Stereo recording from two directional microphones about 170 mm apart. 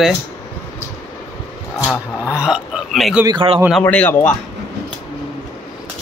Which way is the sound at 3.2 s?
30° right (ahead or behind).